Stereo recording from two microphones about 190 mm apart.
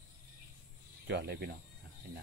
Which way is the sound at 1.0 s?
60° right (ahead or behind).